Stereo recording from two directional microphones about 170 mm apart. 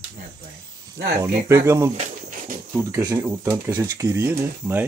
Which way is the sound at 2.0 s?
50° right (ahead or behind).